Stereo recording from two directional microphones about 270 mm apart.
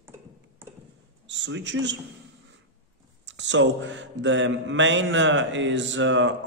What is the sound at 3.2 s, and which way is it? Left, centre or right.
A man's voice, right.